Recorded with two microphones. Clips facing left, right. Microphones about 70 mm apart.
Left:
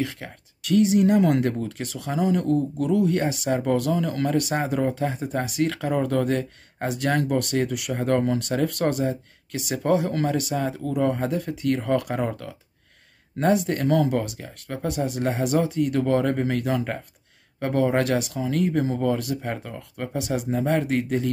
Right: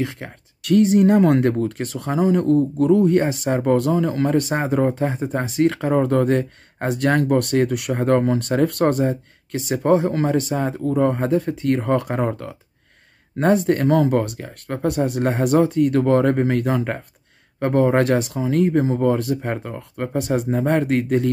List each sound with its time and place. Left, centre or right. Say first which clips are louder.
0.0 s speech: right 3 dB; right
0.6 s speech: right 4 dB; right